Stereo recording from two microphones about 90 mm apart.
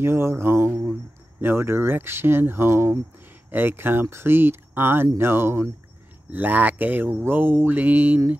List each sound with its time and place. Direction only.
0.0 s speech: 30° right (ahead or behind)